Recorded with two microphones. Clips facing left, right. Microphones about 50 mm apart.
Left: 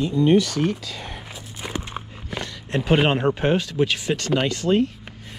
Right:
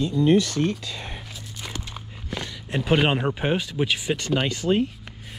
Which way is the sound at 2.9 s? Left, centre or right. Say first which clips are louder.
Left 2 dB; centre.